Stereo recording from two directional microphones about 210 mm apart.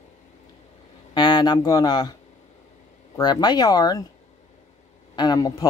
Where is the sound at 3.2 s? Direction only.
20° left (ahead or behind).